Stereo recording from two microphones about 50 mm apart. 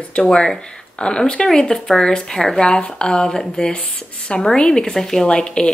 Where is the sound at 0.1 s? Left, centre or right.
Centre.